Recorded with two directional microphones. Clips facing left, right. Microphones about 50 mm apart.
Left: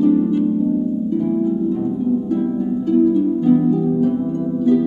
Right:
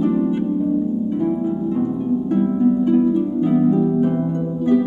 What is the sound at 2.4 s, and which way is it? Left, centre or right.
Harp, right.